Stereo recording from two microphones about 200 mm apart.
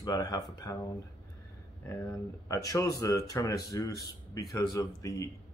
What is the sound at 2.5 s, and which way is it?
A man's voice, 15° left (ahead or behind).